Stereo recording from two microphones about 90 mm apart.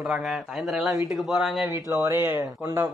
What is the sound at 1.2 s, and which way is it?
Speech, centre (ahead or behind).